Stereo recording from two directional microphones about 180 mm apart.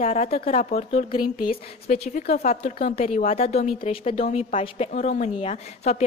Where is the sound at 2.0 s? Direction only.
35° left (ahead or behind).